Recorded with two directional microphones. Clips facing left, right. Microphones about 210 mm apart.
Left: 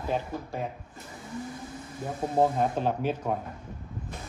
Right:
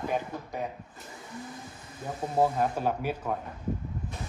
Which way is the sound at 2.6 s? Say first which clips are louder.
Left 1 dB; 10° right (ahead or behind).